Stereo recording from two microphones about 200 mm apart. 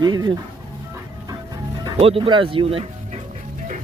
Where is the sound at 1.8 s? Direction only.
30° right (ahead or behind).